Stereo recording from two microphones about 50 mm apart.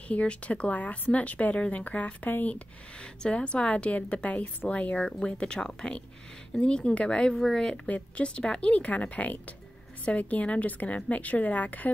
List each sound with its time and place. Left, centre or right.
0.1 s a woman's voice: left
2.5 s a woman's voice: centre
7.3 s a woman's voice: centre; by 11.9 s left